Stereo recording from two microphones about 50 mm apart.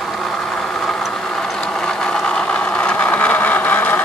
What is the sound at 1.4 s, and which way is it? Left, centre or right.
Vehicle, centre.